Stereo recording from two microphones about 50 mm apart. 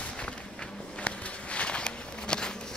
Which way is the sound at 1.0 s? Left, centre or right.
Left.